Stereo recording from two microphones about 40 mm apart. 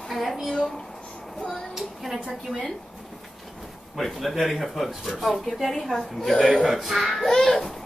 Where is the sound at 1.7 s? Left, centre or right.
Centre.